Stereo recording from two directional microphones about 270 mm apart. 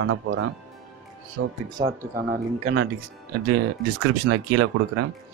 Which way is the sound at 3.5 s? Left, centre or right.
Right.